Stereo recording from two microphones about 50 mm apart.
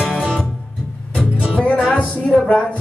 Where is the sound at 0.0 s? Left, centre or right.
Centre.